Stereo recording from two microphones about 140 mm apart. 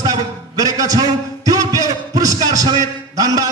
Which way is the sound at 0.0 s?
25° right (ahead or behind).